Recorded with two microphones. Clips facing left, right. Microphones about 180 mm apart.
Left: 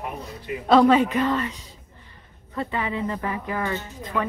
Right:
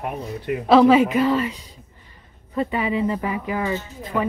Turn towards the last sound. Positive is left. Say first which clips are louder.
# right 3 dB
turn(degrees=-10)  # may be behind; listen again after turning